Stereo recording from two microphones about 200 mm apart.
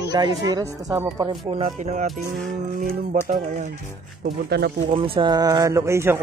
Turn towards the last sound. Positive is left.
turn(degrees=-15)  # may be behind; listen again after turning